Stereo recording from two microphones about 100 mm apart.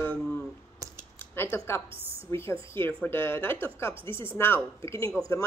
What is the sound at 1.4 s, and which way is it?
A woman's voice, 20° left (ahead or behind).